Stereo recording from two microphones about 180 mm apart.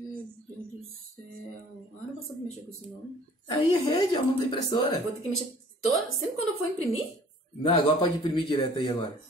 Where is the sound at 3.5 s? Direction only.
25° left (ahead or behind).